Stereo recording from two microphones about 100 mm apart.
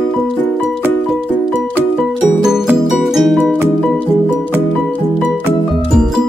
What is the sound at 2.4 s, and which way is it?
Music, 5° right (ahead or behind).